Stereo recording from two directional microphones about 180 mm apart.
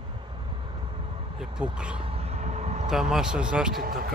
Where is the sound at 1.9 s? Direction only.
30° right (ahead or behind).